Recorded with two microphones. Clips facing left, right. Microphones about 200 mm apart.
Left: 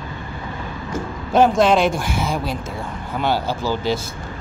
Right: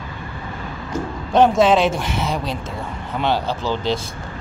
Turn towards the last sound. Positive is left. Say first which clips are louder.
# even
turn(degrees=5)  # may be behind; listen again after turning